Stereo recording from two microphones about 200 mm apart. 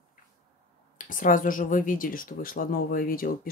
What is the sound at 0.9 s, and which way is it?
Speech, 40° left (ahead or behind).